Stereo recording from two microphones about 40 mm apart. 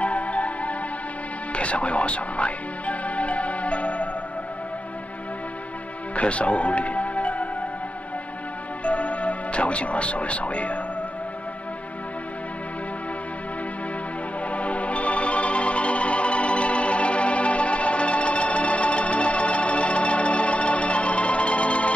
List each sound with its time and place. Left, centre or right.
0.0 s music: left
6.1 s music: left
8.8 s music: left
14.5 s music: left